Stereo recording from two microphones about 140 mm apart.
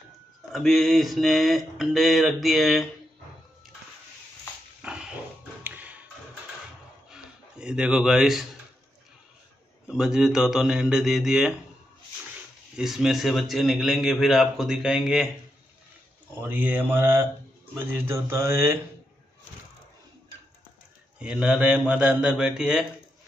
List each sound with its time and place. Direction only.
0.5 s a man's voice: centre (ahead or behind)
4.8 s dog: 5° right (ahead or behind)
5.6 s tap: 10° right (ahead or behind)
7.1 s a sound: 5° right (ahead or behind)
9.8 s a man's voice: 5° right (ahead or behind)
12.7 s a man's voice: 5° right (ahead or behind)
16.3 s a man's voice: 15° right (ahead or behind)
21.2 s a man's voice: 5° right (ahead or behind)